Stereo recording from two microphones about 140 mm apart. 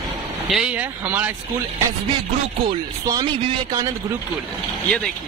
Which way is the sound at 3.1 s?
25° right (ahead or behind).